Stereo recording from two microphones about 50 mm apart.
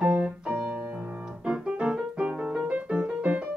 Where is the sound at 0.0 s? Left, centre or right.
Right.